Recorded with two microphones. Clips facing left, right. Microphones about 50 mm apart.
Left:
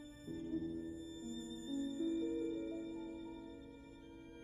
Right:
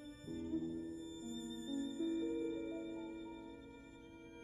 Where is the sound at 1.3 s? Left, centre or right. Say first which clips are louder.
Right 1 dB; left.